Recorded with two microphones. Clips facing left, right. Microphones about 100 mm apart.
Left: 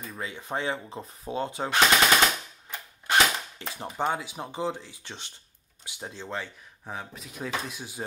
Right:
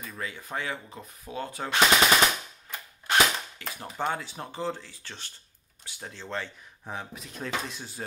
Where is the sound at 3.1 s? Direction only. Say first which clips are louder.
Left 1 dB; 25° left (ahead or behind).